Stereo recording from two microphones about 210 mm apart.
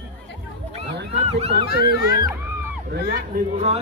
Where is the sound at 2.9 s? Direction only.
50° right (ahead or behind).